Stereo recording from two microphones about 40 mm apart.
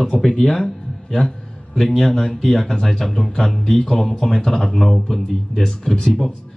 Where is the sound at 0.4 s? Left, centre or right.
Centre.